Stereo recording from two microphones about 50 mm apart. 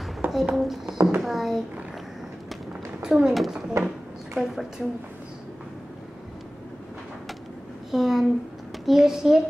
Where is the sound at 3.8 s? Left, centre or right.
Right.